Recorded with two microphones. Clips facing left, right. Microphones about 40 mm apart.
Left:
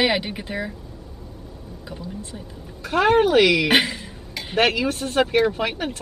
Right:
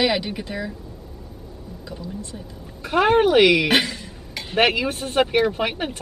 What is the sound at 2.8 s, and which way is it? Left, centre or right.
Speech, centre.